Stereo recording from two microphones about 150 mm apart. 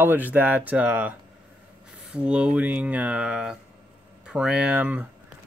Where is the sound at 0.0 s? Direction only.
10° right (ahead or behind).